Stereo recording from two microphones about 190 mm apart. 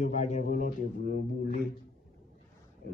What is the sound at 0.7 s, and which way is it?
Speech, 55° left (ahead or behind).